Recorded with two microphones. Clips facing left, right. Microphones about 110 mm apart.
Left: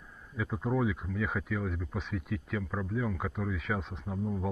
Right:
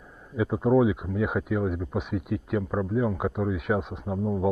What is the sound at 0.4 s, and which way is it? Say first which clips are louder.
Speech: right 10 dB; 10° right (ahead or behind).